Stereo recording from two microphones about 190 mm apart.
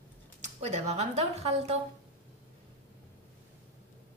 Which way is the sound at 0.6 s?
35° right (ahead or behind).